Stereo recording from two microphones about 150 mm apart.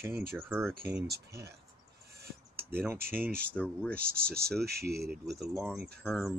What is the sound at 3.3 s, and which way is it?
Speech, 85° right.